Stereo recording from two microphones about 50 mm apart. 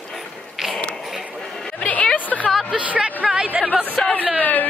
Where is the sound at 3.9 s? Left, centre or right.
Left.